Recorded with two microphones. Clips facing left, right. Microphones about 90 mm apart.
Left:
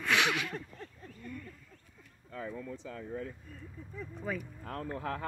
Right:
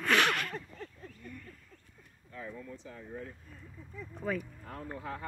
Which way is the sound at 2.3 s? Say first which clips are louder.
Left 3 dB; 90° left.